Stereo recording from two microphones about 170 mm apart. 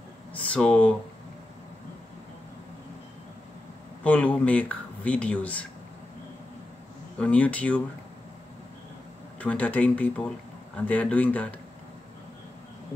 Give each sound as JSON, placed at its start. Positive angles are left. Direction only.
{"t": 0.3, "sound": "speech", "side_deg": 5}
{"t": 4.0, "sound": "speech", "side_deg": 10}
{"t": 7.2, "sound": "speech", "side_deg": 10}
{"t": 9.4, "sound": "speech", "side_deg": 10}